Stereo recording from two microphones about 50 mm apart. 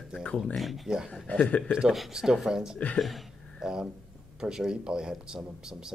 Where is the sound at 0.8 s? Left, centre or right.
Centre.